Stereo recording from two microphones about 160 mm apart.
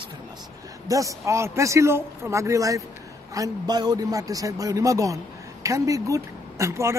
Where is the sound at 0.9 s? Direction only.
20° right (ahead or behind).